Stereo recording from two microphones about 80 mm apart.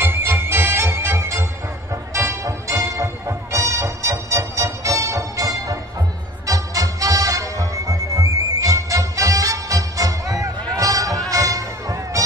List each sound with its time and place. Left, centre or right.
0.0 s music: right